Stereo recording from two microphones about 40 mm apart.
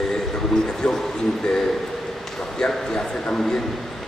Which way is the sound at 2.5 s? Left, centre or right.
Centre.